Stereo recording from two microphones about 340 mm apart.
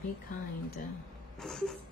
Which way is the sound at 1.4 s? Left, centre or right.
Centre.